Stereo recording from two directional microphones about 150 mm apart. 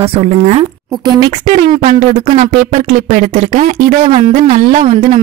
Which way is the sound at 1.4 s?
60° right (ahead or behind).